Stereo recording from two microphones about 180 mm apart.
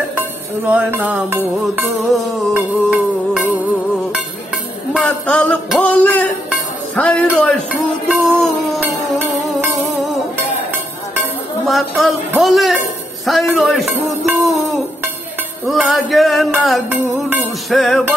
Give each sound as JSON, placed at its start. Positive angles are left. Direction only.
{"t": 0.7, "sound": "speech", "side_deg": -10}
{"t": 1.8, "sound": "music", "side_deg": 0}
{"t": 4.9, "sound": "music", "side_deg": 5}
{"t": 9.6, "sound": "music", "side_deg": 0}
{"t": 11.6, "sound": "music", "side_deg": 0}
{"t": 13.2, "sound": "speech", "side_deg": 0}
{"t": 15.6, "sound": "music", "side_deg": 0}